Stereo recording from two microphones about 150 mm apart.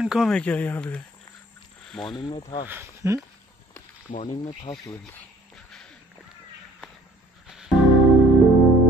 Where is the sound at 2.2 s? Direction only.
35° left (ahead or behind).